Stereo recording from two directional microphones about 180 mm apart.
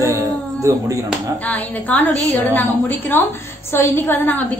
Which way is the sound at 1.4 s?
10° left (ahead or behind).